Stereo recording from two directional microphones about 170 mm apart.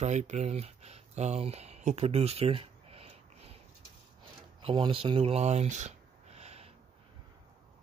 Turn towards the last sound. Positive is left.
turn(degrees=-40)  # may be behind; listen again after turning